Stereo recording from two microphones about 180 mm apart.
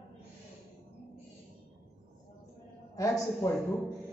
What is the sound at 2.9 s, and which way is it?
Speech, 20° left (ahead or behind).